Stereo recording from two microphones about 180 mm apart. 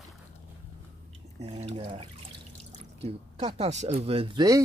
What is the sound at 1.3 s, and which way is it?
Speech, 35° right (ahead or behind).